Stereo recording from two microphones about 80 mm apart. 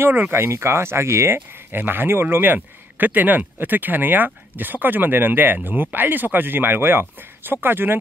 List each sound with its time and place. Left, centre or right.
0.0 s speech: right